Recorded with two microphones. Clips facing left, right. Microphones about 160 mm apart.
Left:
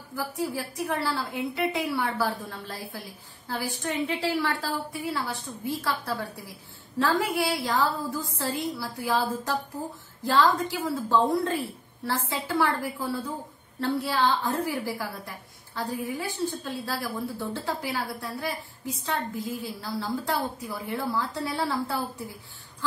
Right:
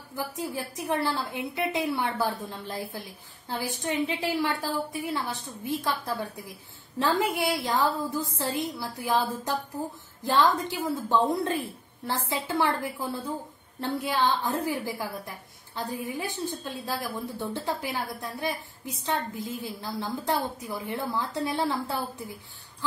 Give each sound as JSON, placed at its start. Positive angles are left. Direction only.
{"t": 0.1, "sound": "a woman's voice", "side_deg": -20}